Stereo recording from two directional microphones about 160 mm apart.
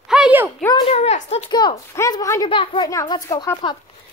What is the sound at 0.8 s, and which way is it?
Speech, 40° left (ahead or behind).